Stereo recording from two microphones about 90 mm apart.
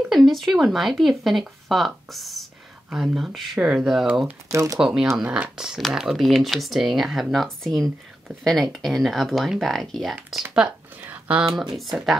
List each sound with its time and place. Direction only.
0.1 s speech: centre (ahead or behind)
4.5 s speech: 35° right (ahead or behind)
4.7 s speech: 5° right (ahead or behind)
11.1 s a sound: 15° right (ahead or behind)
11.4 s speech: 5° right (ahead or behind)